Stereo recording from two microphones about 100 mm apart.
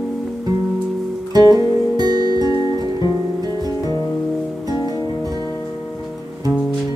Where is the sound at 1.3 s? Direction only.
40° right (ahead or behind).